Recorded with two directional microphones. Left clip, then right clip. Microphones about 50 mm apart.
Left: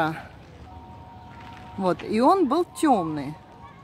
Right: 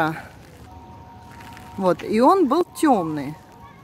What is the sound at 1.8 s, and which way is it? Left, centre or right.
Speech, right.